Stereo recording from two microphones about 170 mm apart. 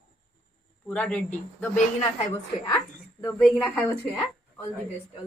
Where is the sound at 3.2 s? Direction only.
10° left (ahead or behind).